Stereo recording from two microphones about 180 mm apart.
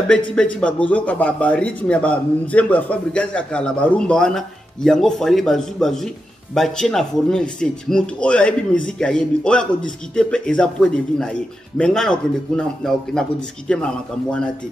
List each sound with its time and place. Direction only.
0.1 s a man's voice: 5° left (ahead or behind)